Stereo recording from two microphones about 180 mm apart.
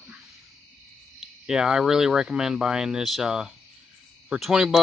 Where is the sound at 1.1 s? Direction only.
5° right (ahead or behind).